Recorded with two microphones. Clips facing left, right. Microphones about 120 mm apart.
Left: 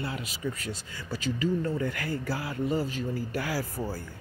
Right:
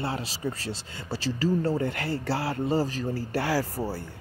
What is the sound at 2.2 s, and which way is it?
Speech, 80° right.